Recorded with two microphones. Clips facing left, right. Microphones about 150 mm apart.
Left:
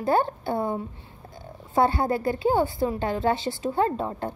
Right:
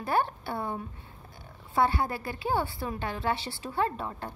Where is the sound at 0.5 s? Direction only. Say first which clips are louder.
Left 7 dB; 45° left (ahead or behind).